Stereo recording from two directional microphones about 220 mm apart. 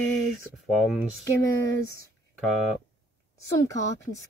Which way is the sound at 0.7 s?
Centre (ahead or behind).